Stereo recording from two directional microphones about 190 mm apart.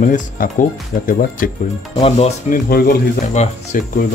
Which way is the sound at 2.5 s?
50° left (ahead or behind).